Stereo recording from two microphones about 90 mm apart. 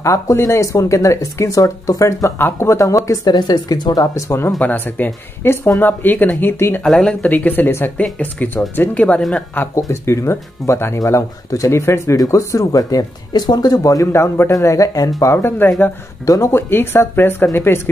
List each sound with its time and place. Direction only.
0.0 s speech: 35° left (ahead or behind)
2.3 s speech: 25° left (ahead or behind)
3.3 s speech: 50° left (ahead or behind)
4.6 s speech: 20° left (ahead or behind)
6.8 s speech: 5° left (ahead or behind)
9.8 s speech: 35° left (ahead or behind)
14.1 s speech: 30° left (ahead or behind)